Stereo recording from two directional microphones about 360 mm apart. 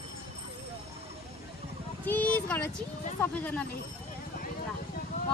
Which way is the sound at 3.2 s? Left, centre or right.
Centre.